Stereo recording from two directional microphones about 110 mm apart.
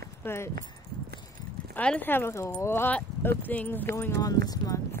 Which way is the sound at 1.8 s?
15° left (ahead or behind).